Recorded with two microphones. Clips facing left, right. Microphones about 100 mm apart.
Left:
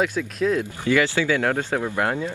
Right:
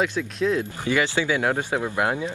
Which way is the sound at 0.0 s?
Centre (ahead or behind).